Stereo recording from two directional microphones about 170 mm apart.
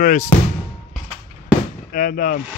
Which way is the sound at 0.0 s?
50° left (ahead or behind).